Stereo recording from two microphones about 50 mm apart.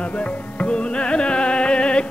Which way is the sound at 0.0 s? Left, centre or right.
Left.